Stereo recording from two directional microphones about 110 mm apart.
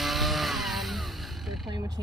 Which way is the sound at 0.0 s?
Centre (ahead or behind).